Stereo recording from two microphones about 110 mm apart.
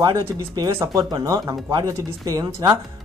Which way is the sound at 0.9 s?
35° right (ahead or behind).